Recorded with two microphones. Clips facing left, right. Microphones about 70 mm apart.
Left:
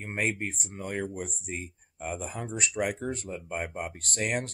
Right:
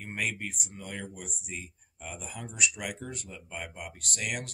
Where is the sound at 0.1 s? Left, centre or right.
Left.